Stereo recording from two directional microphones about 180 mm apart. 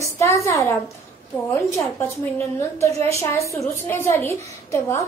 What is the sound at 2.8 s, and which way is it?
A woman's voice, 15° left (ahead or behind).